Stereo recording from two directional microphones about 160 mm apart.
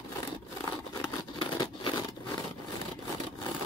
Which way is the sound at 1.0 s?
25° left (ahead or behind).